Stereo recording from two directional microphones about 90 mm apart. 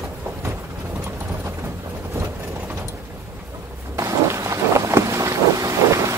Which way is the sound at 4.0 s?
35° right (ahead or behind).